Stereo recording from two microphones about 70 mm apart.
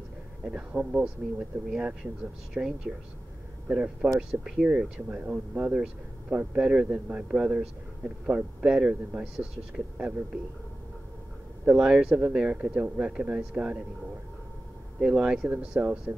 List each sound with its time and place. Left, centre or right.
0.4 s speech: centre
11.7 s speech: centre
15.0 s speech: centre